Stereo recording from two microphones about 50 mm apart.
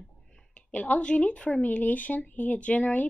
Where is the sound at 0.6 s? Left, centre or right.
Left.